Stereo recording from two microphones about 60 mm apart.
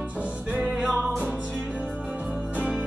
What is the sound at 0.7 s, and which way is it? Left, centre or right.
Music, centre.